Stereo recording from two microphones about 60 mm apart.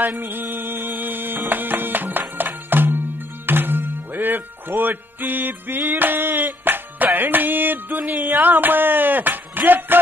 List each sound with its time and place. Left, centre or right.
0.2 s music: right